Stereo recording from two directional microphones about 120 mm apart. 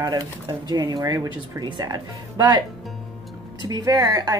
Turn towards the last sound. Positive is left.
turn(degrees=-30)  # may be behind; listen again after turning